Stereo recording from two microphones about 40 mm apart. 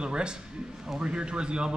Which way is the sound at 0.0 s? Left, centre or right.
Right.